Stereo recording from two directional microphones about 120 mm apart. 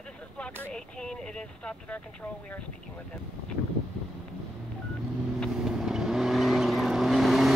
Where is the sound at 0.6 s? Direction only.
10° left (ahead or behind).